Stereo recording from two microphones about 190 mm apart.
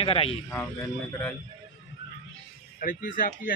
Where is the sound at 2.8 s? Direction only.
45° left (ahead or behind).